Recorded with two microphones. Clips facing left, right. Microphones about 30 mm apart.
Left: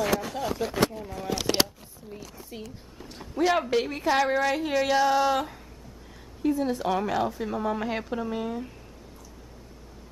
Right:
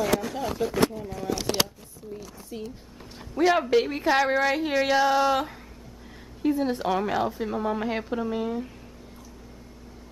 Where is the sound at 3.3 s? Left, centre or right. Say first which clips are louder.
Right 3 dB; centre.